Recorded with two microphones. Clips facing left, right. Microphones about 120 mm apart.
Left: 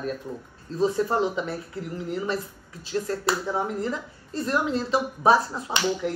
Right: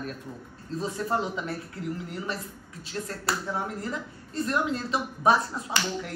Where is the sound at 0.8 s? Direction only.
30° left (ahead or behind).